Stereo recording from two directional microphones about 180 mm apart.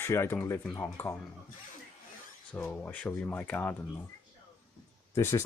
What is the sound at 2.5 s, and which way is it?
Speech, 10° left (ahead or behind).